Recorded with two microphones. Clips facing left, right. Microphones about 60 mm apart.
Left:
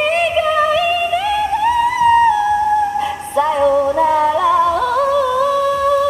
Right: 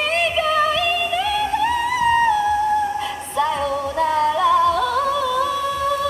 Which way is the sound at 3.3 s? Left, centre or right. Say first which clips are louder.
Left 7 dB; centre.